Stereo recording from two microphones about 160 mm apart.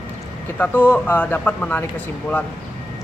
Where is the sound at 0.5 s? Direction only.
10° left (ahead or behind).